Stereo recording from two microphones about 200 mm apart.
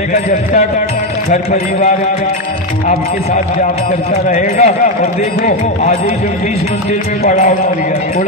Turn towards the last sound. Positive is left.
turn(degrees=40)  # may be behind; listen again after turning